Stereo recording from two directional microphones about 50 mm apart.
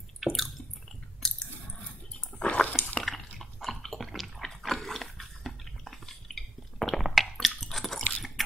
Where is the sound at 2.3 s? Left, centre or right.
Left.